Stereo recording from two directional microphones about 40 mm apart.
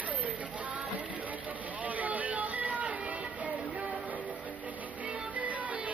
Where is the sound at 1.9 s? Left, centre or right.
Right.